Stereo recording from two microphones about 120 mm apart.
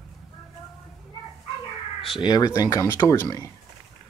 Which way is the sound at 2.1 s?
35° left (ahead or behind).